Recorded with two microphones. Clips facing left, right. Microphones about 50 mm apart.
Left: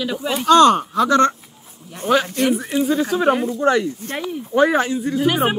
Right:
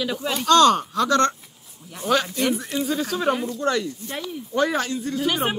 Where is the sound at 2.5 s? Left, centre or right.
Centre.